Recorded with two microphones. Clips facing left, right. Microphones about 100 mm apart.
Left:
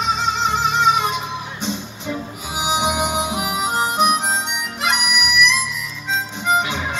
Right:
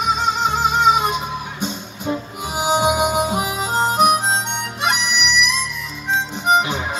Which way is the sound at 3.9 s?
40° right (ahead or behind).